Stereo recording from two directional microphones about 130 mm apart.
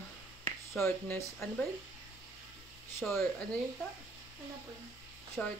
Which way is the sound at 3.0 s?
Centre (ahead or behind).